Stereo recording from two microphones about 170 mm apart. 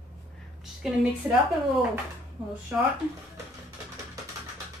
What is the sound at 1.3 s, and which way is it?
Speech, 15° right (ahead or behind).